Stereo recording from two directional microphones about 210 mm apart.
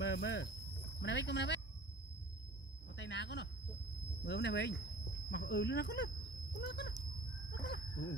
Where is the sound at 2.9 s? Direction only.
55° left (ahead or behind).